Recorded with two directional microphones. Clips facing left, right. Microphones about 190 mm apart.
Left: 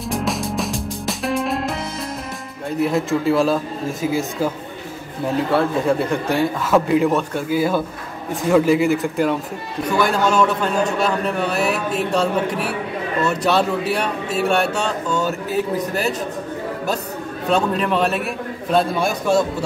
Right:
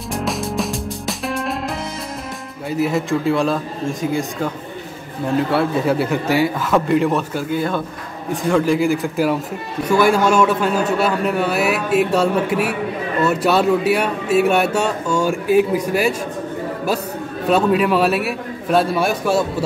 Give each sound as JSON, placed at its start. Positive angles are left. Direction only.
{"t": 0.1, "sound": "music", "side_deg": 0}
{"t": 2.8, "sound": "a man's voice", "side_deg": 0}
{"t": 5.5, "sound": "a man's voice", "side_deg": -5}
{"t": 17.5, "sound": "a man's voice", "side_deg": -5}